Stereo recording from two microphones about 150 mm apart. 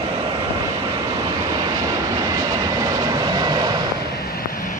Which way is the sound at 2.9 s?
25° right (ahead or behind).